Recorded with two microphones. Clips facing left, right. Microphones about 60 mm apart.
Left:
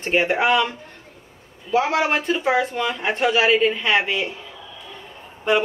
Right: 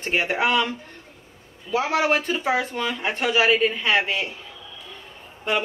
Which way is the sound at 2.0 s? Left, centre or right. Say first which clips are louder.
Left 1 dB; centre.